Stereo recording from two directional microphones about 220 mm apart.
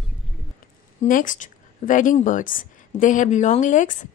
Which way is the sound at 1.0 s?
40° left (ahead or behind).